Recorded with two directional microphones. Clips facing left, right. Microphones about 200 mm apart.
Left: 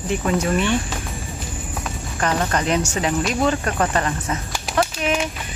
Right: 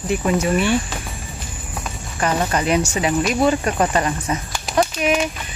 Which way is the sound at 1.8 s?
10° right (ahead or behind).